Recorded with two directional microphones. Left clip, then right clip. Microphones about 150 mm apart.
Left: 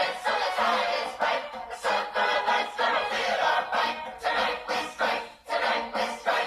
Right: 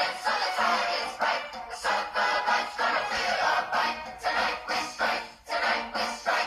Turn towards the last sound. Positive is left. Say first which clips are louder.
# left 1 dB
turn(degrees=25)  # may be behind; listen again after turning